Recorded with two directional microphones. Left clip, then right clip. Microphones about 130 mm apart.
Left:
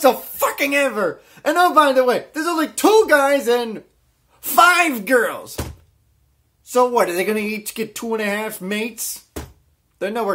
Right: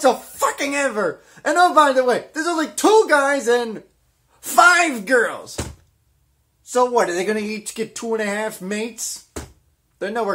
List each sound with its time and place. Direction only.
0.0 s a woman's voice: centre (ahead or behind)
5.0 s speech: 15° left (ahead or behind)
6.7 s speech: 20° left (ahead or behind)